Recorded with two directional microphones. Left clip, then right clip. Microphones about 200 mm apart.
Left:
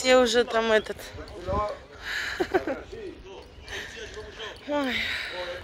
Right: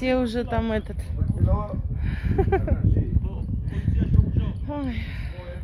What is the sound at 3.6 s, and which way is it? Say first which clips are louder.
Speech: left 4 dB; 15° left (ahead or behind).